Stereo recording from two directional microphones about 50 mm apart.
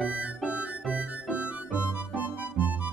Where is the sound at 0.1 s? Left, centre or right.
Right.